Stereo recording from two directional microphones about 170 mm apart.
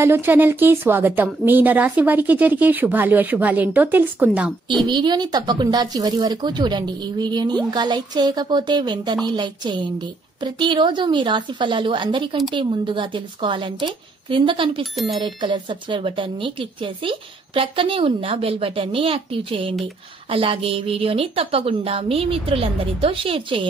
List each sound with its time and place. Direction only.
0.0 s speech: 15° right (ahead or behind)
4.8 s speech: 25° right (ahead or behind)